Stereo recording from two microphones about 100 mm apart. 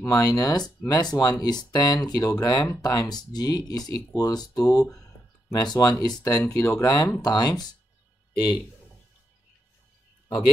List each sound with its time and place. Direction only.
0.0 s speech: 35° left (ahead or behind)
4.8 s speech: 5° left (ahead or behind)
5.5 s speech: 40° left (ahead or behind)